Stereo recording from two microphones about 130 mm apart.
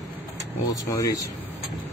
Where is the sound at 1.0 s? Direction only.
25° left (ahead or behind).